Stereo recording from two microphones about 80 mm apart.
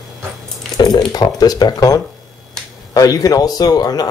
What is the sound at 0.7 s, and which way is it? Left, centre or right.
A man's voice, left.